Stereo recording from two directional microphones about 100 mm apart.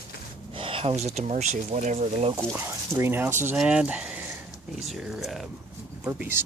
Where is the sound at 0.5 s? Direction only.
60° right (ahead or behind); by 1.3 s 90° right.